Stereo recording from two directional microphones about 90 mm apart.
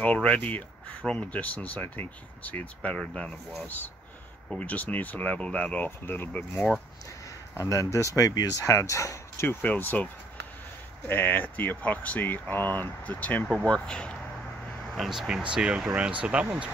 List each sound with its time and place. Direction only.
0.0 s speech: 15° left (ahead or behind)
6.5 s speech: centre (ahead or behind)
7.5 s speech: 35° left (ahead or behind); by 10.0 s 20° left (ahead or behind)
11.1 s speech: 20° left (ahead or behind)
15.0 s speech: 5° right (ahead or behind)